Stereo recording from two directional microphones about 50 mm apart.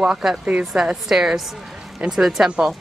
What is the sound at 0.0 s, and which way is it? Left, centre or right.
A woman's voice, centre.